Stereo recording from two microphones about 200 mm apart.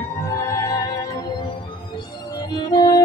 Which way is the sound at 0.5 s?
15° left (ahead or behind).